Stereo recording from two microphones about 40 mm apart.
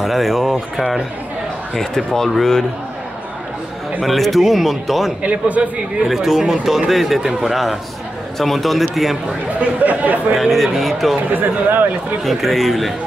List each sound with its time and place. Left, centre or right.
0.0 s speech: centre
1.8 s speech: centre
4.0 s speech: centre
5.2 s a man's voice: right
6.0 s speech: centre
9.6 s speech: right
10.3 s speech: centre
11.3 s speech: right
12.2 s speech: centre